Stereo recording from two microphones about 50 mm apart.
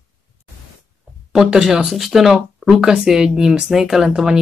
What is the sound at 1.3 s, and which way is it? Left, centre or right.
Speech, centre.